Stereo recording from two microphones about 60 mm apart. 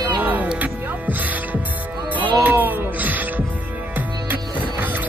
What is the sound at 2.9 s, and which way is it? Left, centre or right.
Music, right.